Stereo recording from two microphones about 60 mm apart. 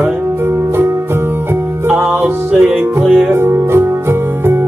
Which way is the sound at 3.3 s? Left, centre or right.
Right.